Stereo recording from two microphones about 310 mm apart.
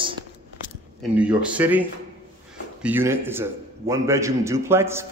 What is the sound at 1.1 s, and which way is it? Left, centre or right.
Speech, centre.